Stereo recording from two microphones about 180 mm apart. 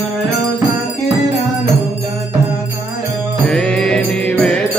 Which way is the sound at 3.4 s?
5° left (ahead or behind).